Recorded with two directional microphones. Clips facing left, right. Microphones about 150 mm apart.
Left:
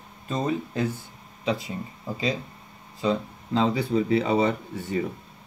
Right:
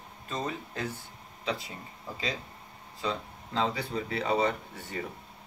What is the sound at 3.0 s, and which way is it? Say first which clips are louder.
Speech: left 8 dB; 20° left (ahead or behind).